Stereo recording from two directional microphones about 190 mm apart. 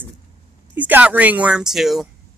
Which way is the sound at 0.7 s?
10° right (ahead or behind).